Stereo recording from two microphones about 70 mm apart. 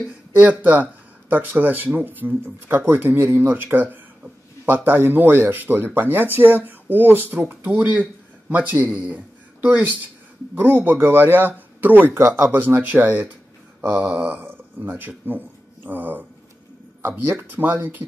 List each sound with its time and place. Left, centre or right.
0.4 s speech: right